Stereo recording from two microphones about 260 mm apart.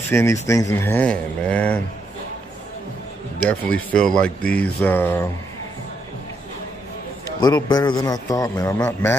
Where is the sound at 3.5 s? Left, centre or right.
Centre.